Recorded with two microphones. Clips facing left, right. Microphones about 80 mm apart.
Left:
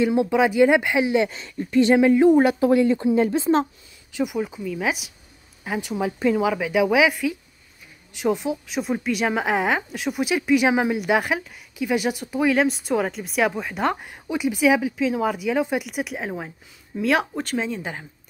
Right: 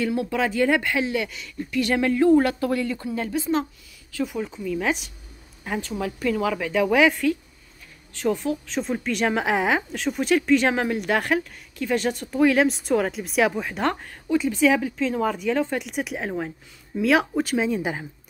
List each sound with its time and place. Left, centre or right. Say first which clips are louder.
0.0 s speech: left 5 dB; left
4.1 s a woman's voice: left 3 dB; centre
14.0 s speech: right 2 dB; centre